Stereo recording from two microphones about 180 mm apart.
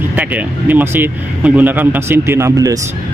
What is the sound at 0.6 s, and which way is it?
A man's voice, 10° right (ahead or behind).